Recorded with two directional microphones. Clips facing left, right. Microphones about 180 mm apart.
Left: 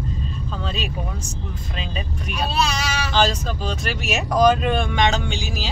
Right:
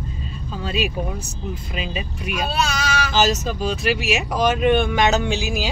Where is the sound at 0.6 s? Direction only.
5° right (ahead or behind).